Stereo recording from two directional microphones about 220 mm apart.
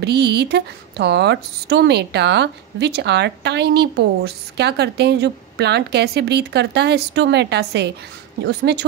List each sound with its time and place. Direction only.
0.0 s speech: 50° right (ahead or behind)